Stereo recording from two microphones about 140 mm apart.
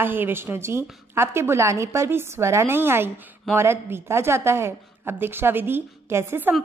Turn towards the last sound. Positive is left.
turn(degrees=-15)  # may be behind; listen again after turning